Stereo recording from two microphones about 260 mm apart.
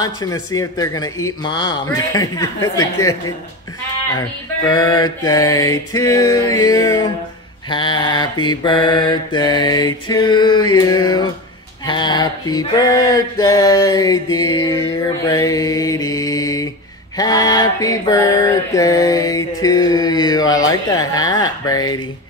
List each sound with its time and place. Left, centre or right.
0.0 s a man's voice: centre
4.6 s a man's voice: centre
10.5 s mantra: left
11.8 s a sound: centre
17.2 s mantra: centre